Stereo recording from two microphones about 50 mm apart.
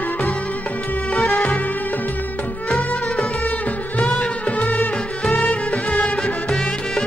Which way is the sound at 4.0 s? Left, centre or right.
Left.